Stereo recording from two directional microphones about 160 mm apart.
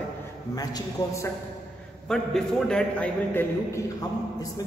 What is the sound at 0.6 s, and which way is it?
Speech, 20° left (ahead or behind).